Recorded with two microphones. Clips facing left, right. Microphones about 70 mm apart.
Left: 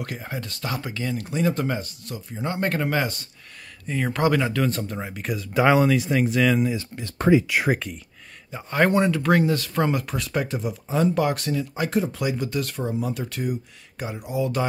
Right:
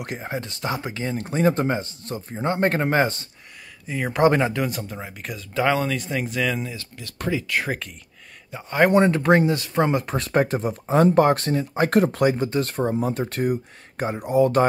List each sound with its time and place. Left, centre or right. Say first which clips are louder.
0.0 s speech: right 3 dB; right
3.8 s speech: left 1 dB; centre
4.1 s speech: right 4 dB; right
4.6 s speech: left 3 dB; centre
6.7 s speech: left 7 dB; left
7.4 s speech: left 3 dB; centre
8.9 s speech: right 3 dB; right
11.9 s speech: right 7 dB; right
12.4 s speech: right 4 dB; right